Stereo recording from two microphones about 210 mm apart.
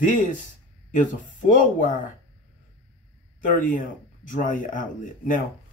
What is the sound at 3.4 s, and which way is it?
Speech, 40° left (ahead or behind).